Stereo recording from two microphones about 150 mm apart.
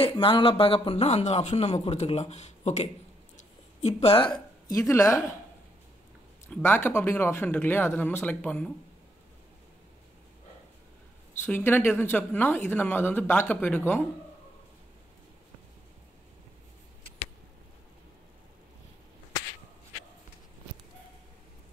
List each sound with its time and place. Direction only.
0.0 s a man's voice: 35° left (ahead or behind)
3.3 s a sound: 45° left (ahead or behind); by 5.2 s 20° left (ahead or behind)
6.5 s speech: 15° left (ahead or behind)
11.4 s speech: 15° left (ahead or behind)